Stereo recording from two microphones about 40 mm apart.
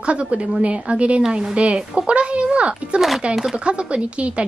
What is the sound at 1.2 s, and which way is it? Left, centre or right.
A woman's voice, centre.